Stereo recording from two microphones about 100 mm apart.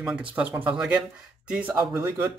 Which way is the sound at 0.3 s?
15° right (ahead or behind).